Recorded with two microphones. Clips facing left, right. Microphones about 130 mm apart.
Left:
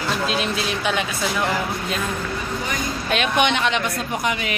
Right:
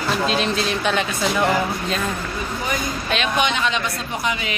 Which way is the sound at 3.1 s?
55° left (ahead or behind).